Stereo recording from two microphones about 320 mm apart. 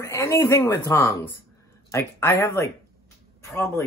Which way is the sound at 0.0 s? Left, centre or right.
Centre.